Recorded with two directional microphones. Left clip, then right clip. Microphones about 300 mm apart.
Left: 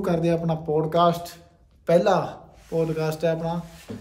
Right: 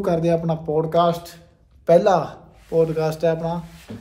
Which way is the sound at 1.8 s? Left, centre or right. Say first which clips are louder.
Right 4 dB; centre.